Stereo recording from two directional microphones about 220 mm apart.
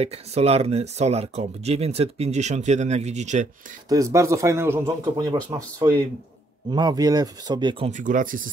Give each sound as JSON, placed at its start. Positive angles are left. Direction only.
{"t": 0.0, "sound": "speech", "side_deg": -30}
{"t": 3.9, "sound": "speech", "side_deg": -15}
{"t": 7.9, "sound": "speech", "side_deg": -35}